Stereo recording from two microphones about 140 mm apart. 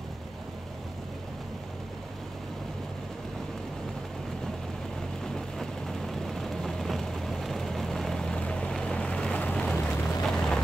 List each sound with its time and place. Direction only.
5.2 s vehicle: 5° left (ahead or behind)